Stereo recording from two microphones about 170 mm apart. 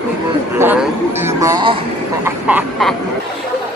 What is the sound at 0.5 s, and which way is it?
Speech, 10° right (ahead or behind).